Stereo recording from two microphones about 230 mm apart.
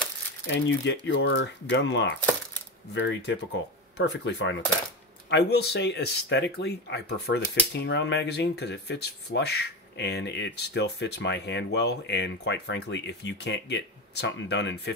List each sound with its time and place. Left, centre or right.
0.5 s speech: left